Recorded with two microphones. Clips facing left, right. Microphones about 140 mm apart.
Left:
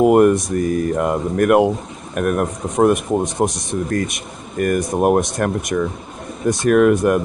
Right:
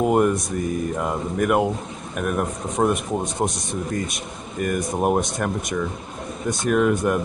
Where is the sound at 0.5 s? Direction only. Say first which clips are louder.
Left 6 dB; 60° left (ahead or behind).